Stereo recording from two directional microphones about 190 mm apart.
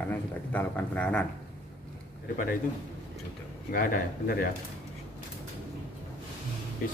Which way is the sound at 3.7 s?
50° left (ahead or behind).